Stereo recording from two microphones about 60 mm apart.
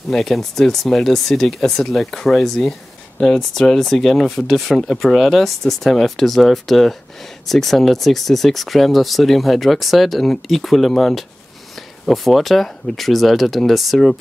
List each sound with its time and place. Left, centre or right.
0.1 s speech: centre